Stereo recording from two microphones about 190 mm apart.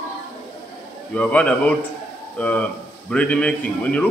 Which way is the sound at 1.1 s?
5° left (ahead or behind).